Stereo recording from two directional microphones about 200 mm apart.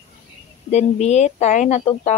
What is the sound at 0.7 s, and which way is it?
Speech, 35° left (ahead or behind).